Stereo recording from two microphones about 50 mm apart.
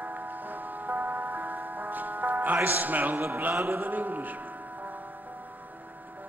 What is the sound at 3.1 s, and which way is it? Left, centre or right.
Speech, right.